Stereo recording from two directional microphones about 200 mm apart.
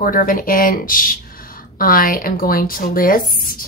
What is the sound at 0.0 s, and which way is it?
Speech, 45° left (ahead or behind).